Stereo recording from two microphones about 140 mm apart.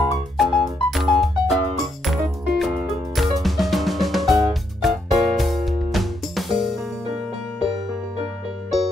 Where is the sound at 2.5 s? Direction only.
Centre (ahead or behind).